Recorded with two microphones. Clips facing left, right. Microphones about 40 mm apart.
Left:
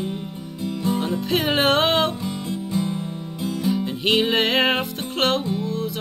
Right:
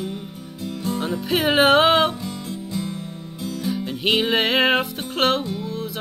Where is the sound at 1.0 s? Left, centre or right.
Centre.